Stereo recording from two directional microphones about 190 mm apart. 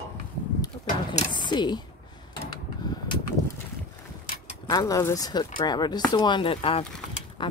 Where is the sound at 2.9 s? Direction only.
20° left (ahead or behind).